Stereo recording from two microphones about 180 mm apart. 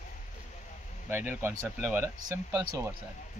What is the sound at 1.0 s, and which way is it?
Speech, 10° right (ahead or behind).